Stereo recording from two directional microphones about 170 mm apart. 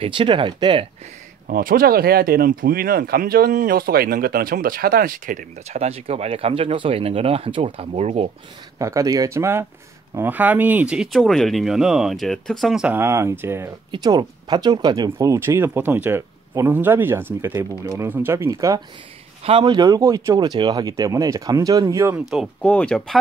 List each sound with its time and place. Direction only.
0.0 s speech: 30° right (ahead or behind)
1.5 s speech: 55° right (ahead or behind); by 8.3 s 35° right (ahead or behind)
8.7 s speech: 20° right (ahead or behind)
22.6 s speech: 5° left (ahead or behind)